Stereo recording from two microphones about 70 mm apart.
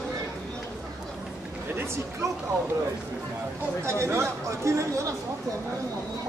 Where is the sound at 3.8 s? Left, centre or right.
Right.